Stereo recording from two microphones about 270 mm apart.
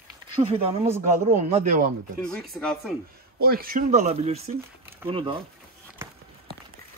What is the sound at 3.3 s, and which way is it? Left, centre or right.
Speech, right.